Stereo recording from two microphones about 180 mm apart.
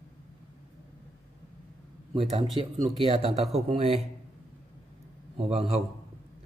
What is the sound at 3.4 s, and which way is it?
Speech, centre (ahead or behind).